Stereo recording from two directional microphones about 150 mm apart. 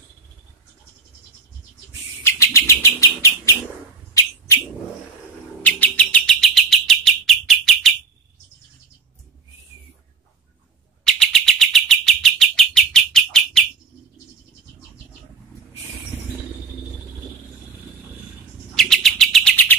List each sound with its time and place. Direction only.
2.2 s bird: 20° left (ahead or behind)
5.6 s bird: 10° left (ahead or behind)
11.1 s bird: 5° left (ahead or behind)
18.8 s chirp: 5° left (ahead or behind)